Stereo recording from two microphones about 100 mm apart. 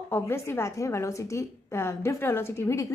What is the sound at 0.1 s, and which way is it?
A woman's voice, 25° left (ahead or behind).